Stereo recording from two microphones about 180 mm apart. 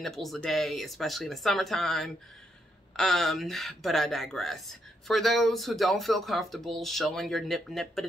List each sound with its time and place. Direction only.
0.0 s speech: centre (ahead or behind)